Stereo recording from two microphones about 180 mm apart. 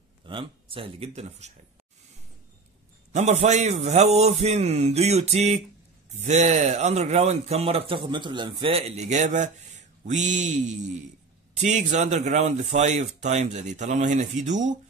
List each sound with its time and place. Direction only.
0.3 s a man's voice: 30° right (ahead or behind)
3.1 s a man's voice: 40° right (ahead or behind)